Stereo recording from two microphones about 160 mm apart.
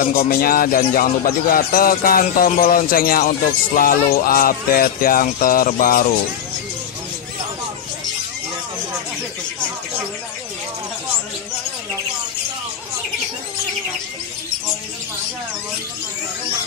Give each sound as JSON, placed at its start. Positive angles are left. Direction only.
{"t": 0.0, "sound": "speech", "side_deg": 60}